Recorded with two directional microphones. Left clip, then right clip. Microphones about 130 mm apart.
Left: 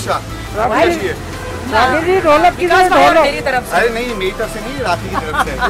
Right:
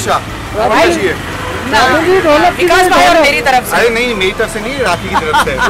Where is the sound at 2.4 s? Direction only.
5° right (ahead or behind).